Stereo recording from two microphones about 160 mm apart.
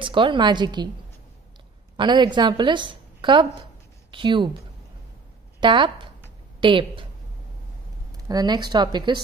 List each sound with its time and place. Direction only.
0.0 s a woman's voice: 30° right (ahead or behind)
2.0 s a woman's voice: 30° right (ahead or behind)
5.6 s speech: 30° right (ahead or behind)
8.3 s a woman's voice: 25° right (ahead or behind)